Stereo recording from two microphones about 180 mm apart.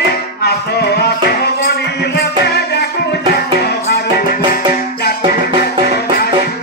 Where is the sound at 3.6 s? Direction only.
65° left (ahead or behind).